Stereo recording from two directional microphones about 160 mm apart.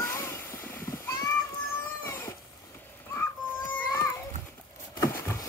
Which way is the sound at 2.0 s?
15° left (ahead or behind).